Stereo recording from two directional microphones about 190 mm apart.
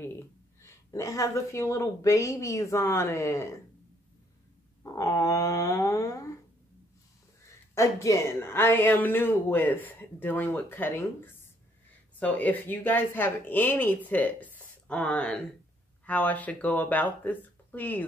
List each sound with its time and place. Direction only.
0.0 s speech: 15° left (ahead or behind)
4.8 s a sound: 20° left (ahead or behind)
7.7 s speech: 15° left (ahead or behind)